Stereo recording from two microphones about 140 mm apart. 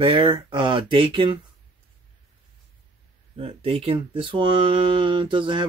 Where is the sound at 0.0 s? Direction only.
40° right (ahead or behind).